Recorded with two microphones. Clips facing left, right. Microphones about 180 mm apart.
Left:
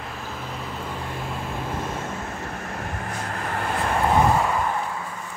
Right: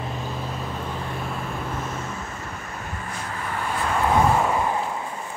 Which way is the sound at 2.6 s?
60° left (ahead or behind).